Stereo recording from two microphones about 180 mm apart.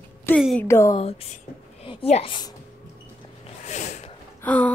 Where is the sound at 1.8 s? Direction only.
30° left (ahead or behind).